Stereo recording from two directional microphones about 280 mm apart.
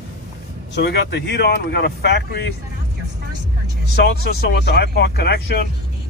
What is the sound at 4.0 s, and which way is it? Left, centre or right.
Speech, left.